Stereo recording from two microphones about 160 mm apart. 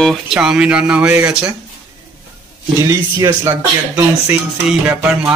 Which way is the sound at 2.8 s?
20° right (ahead or behind).